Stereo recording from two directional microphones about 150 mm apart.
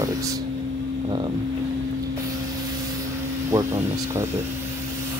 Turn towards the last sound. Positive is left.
turn(degrees=-20)  # may be behind; listen again after turning